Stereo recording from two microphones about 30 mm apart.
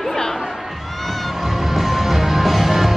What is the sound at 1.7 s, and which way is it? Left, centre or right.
Music, centre.